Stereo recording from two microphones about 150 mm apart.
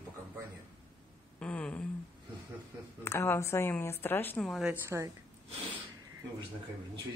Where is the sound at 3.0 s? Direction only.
15° left (ahead or behind).